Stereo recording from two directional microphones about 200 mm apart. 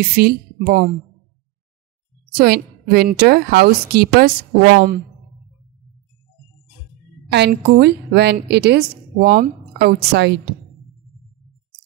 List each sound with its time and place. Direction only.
0.1 s a woman's voice: 50° right (ahead or behind)
2.3 s a woman's voice: 50° right (ahead or behind)
7.2 s a woman's voice: 55° right (ahead or behind)